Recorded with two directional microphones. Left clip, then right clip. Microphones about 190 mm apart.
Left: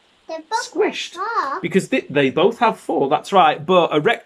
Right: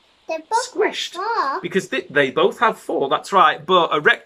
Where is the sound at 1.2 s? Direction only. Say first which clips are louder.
Right 1 dB; 10° right (ahead or behind).